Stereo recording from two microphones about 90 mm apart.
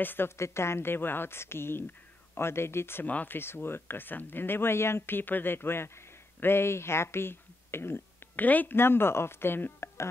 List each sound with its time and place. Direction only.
0.0 s a woman's voice: 25° left (ahead or behind)